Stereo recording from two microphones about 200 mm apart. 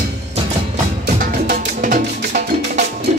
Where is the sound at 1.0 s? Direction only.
45° right (ahead or behind).